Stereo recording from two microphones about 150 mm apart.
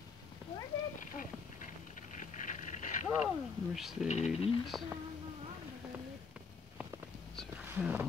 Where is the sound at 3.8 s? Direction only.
Centre (ahead or behind).